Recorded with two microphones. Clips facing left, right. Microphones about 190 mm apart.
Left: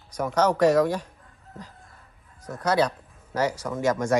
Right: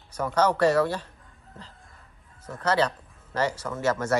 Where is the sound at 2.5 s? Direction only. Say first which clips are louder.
Left 1 dB; 10° left (ahead or behind).